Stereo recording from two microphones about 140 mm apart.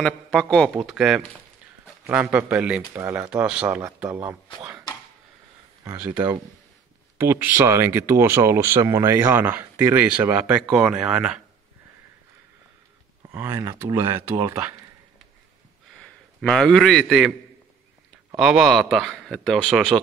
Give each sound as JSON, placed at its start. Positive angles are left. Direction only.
{"t": 0.0, "sound": "a man's voice", "side_deg": 5}
{"t": 2.3, "sound": "speech", "side_deg": -10}
{"t": 3.6, "sound": "speech", "side_deg": -20}
{"t": 7.2, "sound": "a man's voice", "side_deg": -15}
{"t": 13.3, "sound": "speech", "side_deg": -20}
{"t": 16.0, "sound": "a man's voice", "side_deg": 5}
{"t": 18.3, "sound": "a man's voice", "side_deg": -5}